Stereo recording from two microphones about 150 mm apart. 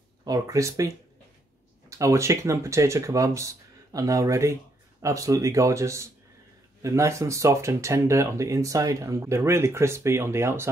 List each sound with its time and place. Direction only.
0.2 s speech: 25° right (ahead or behind)